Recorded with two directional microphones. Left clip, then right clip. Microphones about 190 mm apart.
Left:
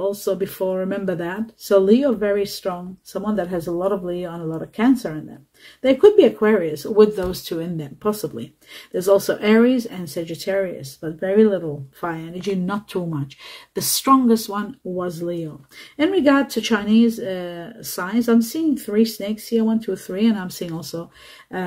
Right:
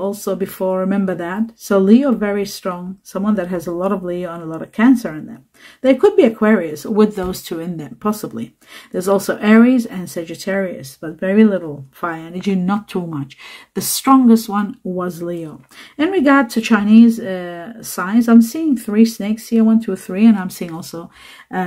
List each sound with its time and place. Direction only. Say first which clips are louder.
0.0 s speech: right 1 dB; 30° right (ahead or behind)